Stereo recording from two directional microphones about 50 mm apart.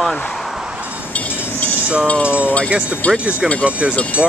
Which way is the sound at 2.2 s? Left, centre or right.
Right.